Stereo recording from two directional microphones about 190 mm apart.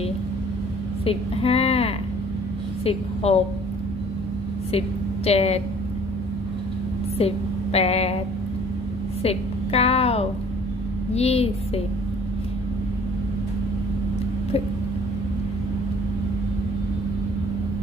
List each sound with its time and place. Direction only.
1.0 s a woman's voice: 30° left (ahead or behind)
4.7 s a woman's voice: 30° left (ahead or behind)
7.2 s a woman's voice: 30° left (ahead or behind)
9.2 s a woman's voice: 30° left (ahead or behind)